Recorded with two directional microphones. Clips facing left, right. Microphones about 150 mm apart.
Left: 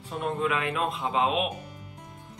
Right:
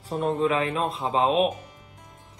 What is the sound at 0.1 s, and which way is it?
Speech, 35° right (ahead or behind).